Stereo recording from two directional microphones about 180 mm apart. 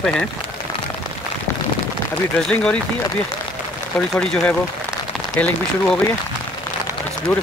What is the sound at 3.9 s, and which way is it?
Speech, 5° left (ahead or behind).